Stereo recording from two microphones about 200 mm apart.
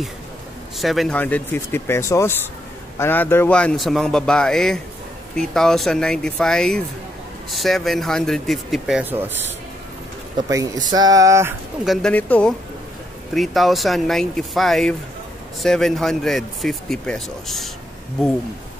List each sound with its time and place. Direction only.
0.7 s speech: centre (ahead or behind)
10.3 s a sound: 15° right (ahead or behind)
11.8 s speech: centre (ahead or behind)